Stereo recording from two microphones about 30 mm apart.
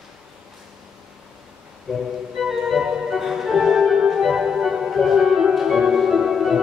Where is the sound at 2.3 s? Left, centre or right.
Centre.